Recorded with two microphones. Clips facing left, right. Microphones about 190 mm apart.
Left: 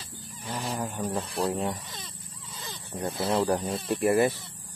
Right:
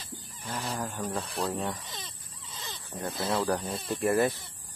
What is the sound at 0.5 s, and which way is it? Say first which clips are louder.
Speech: left 2 dB; 15° left (ahead or behind).